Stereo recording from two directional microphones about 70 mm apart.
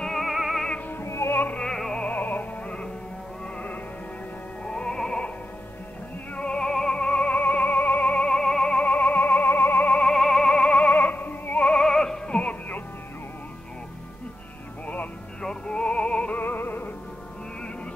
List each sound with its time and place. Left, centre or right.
0.0 s music: centre
1.0 s music: left
1.6 s music: centre
2.0 s music: left
6.3 s music: centre
10.1 s music: centre; by 11.7 s left
11.7 s music: centre
15.4 s music: centre